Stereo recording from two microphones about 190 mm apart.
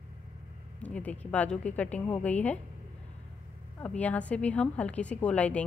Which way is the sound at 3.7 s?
5° left (ahead or behind).